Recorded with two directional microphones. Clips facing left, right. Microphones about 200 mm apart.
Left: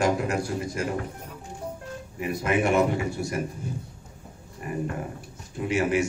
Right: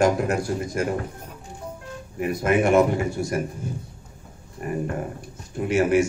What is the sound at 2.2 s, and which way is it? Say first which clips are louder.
A man's voice: right 4 dB; 50° right (ahead or behind).